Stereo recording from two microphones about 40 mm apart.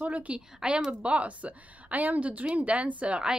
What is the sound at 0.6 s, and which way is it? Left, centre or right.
Speech, centre.